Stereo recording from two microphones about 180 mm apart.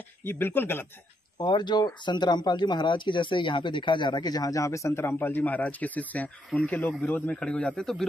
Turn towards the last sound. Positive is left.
turn(degrees=0)  # may be behind; listen again after turning